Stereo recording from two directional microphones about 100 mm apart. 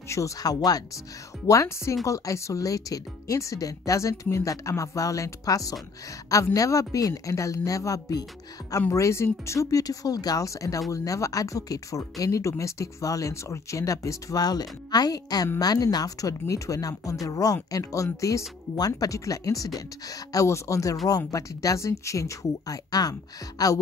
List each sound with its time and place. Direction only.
0.1 s speech: 35° left (ahead or behind)